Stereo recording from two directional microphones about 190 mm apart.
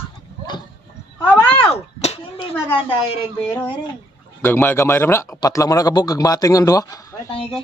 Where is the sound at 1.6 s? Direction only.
30° left (ahead or behind).